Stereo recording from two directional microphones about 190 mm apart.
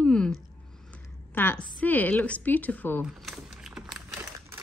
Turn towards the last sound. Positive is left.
turn(degrees=-5)  # may be behind; listen again after turning